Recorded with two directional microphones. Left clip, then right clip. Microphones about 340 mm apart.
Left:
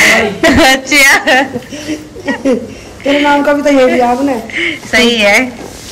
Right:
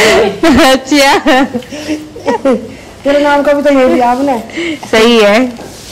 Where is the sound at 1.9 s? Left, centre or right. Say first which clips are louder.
Right 5 dB; centre.